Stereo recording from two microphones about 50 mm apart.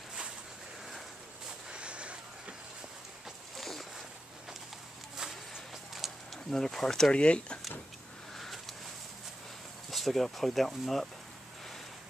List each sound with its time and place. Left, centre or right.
1.7 s a sound: right
3.5 s boat: centre
5.9 s a sound: centre
6.5 s speech: centre
7.1 s speech: left
9.8 s speech: centre